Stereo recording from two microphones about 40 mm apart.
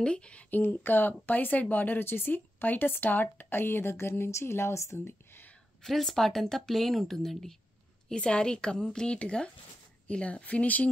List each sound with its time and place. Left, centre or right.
0.0 s a woman's voice: left
0.5 s speech: left
5.8 s speech: centre
8.1 s a woman's voice: left